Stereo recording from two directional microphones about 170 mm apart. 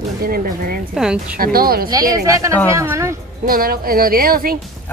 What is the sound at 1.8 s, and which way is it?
Speech, 20° right (ahead or behind).